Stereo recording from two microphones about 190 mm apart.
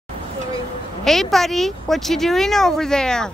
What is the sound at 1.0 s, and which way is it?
Speech, centre (ahead or behind).